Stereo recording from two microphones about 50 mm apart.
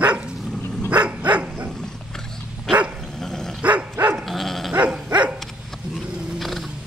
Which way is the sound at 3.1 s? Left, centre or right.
Centre.